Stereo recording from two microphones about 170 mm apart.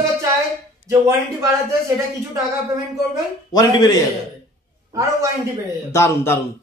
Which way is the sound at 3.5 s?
20° left (ahead or behind).